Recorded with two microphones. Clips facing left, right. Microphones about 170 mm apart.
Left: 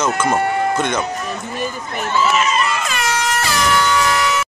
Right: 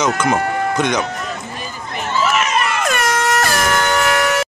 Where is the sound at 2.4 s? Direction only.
65° right (ahead or behind).